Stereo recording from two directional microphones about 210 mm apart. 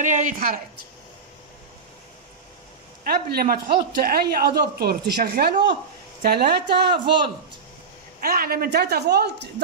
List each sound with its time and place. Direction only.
0.0 s a woman's voice: 35° right (ahead or behind)
3.0 s speech: 45° right (ahead or behind)
8.2 s speech: 45° right (ahead or behind)